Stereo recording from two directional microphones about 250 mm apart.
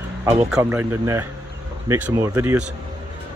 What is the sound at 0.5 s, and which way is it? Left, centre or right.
Speech, centre.